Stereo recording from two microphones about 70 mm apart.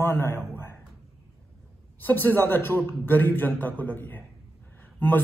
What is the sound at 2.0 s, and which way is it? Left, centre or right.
A man's voice, left.